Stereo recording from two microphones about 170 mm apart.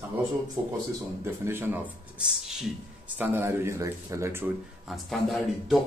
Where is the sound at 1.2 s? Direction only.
15° right (ahead or behind).